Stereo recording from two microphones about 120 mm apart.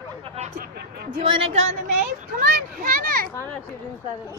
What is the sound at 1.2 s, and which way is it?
Speech, 45° right (ahead or behind).